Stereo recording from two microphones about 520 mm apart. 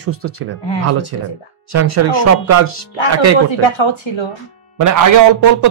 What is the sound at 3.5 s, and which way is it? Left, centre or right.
Speech, left.